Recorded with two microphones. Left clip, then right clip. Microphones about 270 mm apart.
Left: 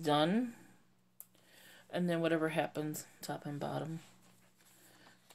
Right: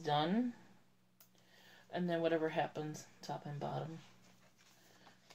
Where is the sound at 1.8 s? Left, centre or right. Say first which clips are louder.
Left 2 dB; left.